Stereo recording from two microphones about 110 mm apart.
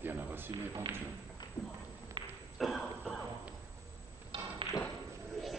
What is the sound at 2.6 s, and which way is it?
Throat clearing, centre (ahead or behind).